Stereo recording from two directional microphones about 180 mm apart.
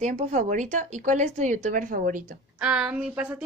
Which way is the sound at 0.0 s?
40° right (ahead or behind).